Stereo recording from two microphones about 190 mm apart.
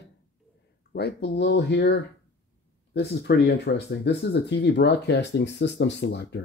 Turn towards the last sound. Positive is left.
turn(degrees=60)  # may be behind; listen again after turning